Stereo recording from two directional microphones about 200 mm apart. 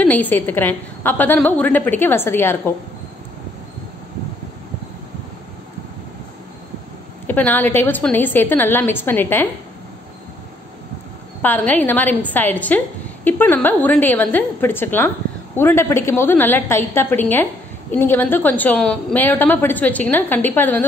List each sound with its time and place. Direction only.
0.0 s a woman's voice: 10° left (ahead or behind)
7.2 s a woman's voice: 10° left (ahead or behind)
11.4 s a woman's voice: 10° left (ahead or behind)